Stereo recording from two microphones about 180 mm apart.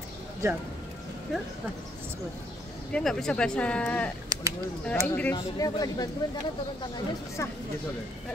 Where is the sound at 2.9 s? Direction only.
5° left (ahead or behind).